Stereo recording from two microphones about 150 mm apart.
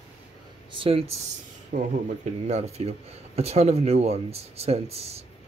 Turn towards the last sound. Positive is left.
turn(degrees=-45)  # may be behind; listen again after turning